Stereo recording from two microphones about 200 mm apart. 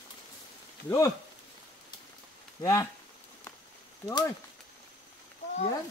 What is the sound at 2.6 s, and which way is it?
Speech, 20° left (ahead or behind).